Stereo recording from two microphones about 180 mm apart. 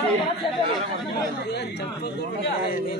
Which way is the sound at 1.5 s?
65° left (ahead or behind).